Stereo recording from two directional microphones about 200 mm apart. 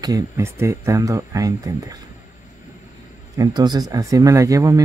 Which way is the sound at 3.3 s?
20° right (ahead or behind).